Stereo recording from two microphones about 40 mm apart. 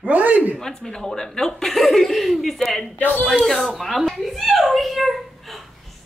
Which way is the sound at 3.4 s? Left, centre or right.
Centre.